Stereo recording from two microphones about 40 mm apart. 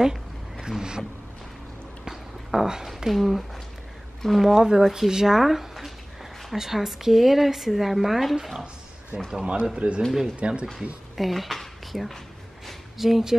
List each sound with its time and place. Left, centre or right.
0.0 s a sound: centre
2.0 s a sound: centre
3.1 s a woman's voice: centre
4.6 s a woman's voice: centre
9.3 s a man's voice: right
11.1 s speech: centre